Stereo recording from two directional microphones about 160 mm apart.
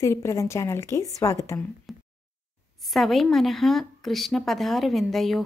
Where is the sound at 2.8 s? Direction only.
Centre (ahead or behind).